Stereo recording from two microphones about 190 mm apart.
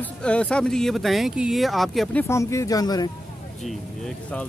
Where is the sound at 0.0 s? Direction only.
5° left (ahead or behind).